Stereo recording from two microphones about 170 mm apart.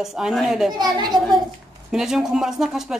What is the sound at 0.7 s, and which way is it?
Speech, 25° right (ahead or behind).